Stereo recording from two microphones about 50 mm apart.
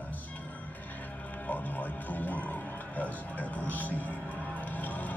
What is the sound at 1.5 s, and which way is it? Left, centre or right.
Music, left.